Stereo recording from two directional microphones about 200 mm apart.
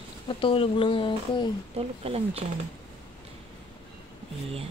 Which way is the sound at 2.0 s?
30° right (ahead or behind).